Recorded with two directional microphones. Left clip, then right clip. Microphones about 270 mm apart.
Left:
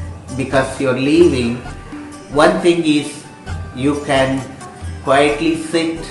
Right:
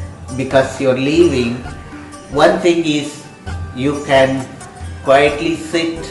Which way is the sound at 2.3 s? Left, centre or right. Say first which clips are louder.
Right 1 dB; centre.